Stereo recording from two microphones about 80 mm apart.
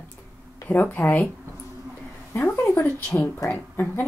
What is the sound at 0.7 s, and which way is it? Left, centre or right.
Speech, left.